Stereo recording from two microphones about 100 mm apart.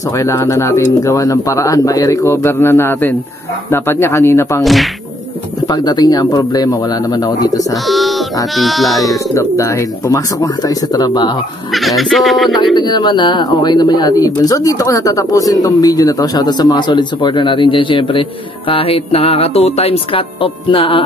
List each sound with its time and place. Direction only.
0.2 s speech: 30° left (ahead or behind)
5.7 s speech: 45° left (ahead or behind)
7.8 s bird: centre (ahead or behind)
8.5 s speech: centre (ahead or behind)
9.3 s speech: 30° left (ahead or behind)
11.7 s speech: centre (ahead or behind)
12.7 s speech: 45° left (ahead or behind); by 21.0 s 65° left (ahead or behind)